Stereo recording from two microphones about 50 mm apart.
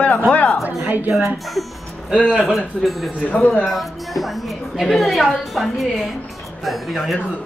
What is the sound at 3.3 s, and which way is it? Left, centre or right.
Speech, left.